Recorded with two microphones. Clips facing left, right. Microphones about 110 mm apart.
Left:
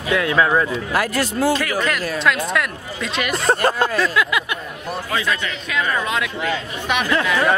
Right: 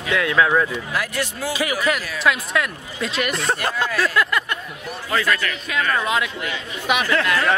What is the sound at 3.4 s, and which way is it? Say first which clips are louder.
Speech: left 5 dB; 40° left (ahead or behind).